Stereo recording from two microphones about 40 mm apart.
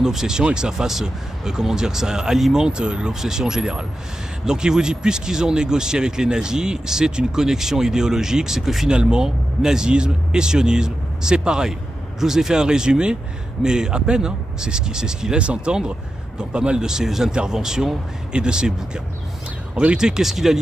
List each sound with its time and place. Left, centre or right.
0.0 s speech: centre
2.6 s speech: right; by 8.8 s centre
8.8 s speech: centre
20.0 s speech: centre